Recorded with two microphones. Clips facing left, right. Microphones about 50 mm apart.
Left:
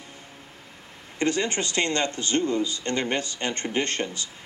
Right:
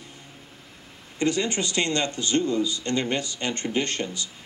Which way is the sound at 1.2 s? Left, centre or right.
Left.